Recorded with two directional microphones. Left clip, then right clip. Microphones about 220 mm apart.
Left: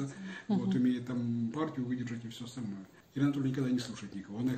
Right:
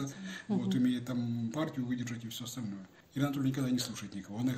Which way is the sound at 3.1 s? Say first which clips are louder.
Left 1 dB; 40° right (ahead or behind).